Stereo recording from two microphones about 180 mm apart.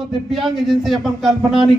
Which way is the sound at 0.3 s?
Centre (ahead or behind).